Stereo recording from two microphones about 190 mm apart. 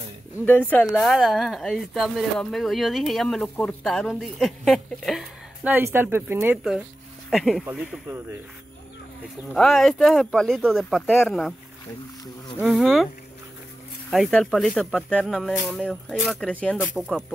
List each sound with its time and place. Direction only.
0.5 s speech: 10° left (ahead or behind)
1.1 s speech: centre (ahead or behind)
9.5 s speech: centre (ahead or behind)
12.6 s speech: centre (ahead or behind)
14.1 s speech: centre (ahead or behind)